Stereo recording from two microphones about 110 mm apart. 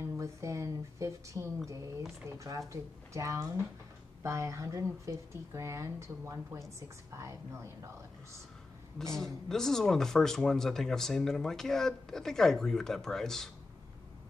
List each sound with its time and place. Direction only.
0.0 s a sound: 25° right (ahead or behind)
1.7 s speech: 30° right (ahead or behind)
8.9 s speech: 5° left (ahead or behind)